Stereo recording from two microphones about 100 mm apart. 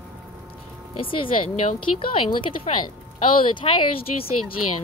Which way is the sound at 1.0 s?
60° left (ahead or behind).